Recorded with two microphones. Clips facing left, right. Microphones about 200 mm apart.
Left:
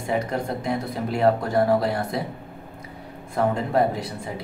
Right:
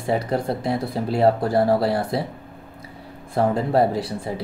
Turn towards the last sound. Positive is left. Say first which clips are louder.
# right 4 dB
turn(degrees=-35)  # may be behind; listen again after turning